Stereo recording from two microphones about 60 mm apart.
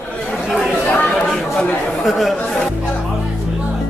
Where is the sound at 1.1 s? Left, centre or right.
Centre.